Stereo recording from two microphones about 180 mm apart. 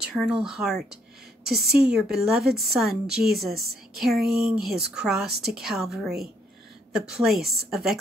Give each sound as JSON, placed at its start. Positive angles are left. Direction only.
{"t": 0.1, "sound": "a woman's voice", "side_deg": 0}
{"t": 4.7, "sound": "a woman's voice", "side_deg": -65}
{"t": 5.0, "sound": "a woman's voice", "side_deg": 0}